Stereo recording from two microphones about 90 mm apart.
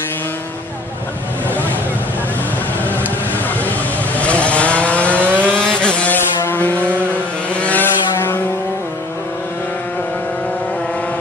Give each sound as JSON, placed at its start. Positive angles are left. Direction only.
{"t": 4.2, "sound": "vehicle", "side_deg": 15}
{"t": 6.1, "sound": "vehicle", "side_deg": 25}